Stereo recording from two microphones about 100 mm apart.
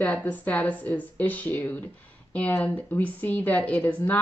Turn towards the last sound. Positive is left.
turn(degrees=15)  # may be behind; listen again after turning